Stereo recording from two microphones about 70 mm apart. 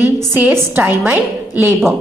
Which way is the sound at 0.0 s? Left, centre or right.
Right.